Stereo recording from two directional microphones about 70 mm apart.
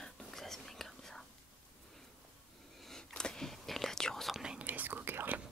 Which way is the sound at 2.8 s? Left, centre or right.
Centre.